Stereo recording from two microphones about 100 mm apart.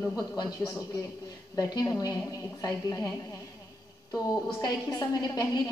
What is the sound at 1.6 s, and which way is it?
A woman's voice, 40° left (ahead or behind).